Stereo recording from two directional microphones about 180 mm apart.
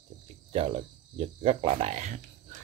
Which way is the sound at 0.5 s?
30° right (ahead or behind).